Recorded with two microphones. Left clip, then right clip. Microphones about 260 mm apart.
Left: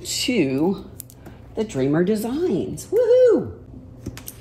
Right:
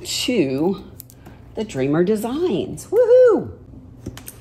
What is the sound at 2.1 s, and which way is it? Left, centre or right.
Speech, centre.